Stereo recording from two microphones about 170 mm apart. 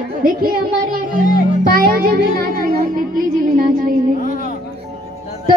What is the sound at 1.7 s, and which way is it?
Speech, 60° right (ahead or behind).